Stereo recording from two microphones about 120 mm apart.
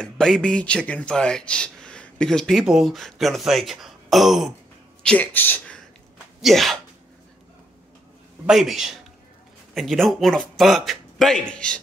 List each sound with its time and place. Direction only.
0.0 s speech: 5° left (ahead or behind)
5.0 s speech: 15° left (ahead or behind)
6.4 s speech: centre (ahead or behind)
8.5 s speech: 5° right (ahead or behind)